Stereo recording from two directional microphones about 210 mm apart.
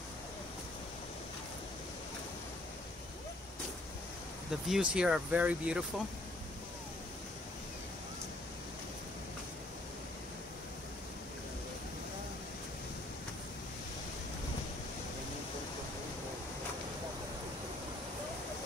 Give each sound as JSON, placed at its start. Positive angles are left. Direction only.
{"t": 4.5, "sound": "speech", "side_deg": 0}